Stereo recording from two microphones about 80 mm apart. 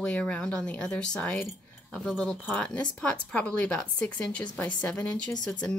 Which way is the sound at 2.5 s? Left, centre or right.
Centre.